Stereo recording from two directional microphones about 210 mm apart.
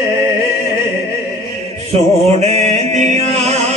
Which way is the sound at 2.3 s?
30° right (ahead or behind).